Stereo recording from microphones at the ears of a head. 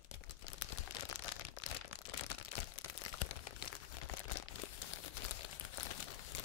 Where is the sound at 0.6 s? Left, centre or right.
Left.